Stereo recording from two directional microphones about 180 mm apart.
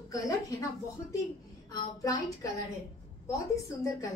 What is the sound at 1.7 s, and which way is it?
Speech, 20° left (ahead or behind).